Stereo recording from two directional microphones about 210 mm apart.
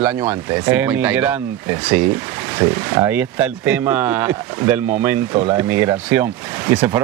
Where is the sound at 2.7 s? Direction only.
10° right (ahead or behind).